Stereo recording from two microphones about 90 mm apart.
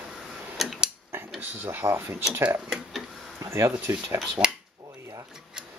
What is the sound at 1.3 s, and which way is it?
Speech, 25° right (ahead or behind).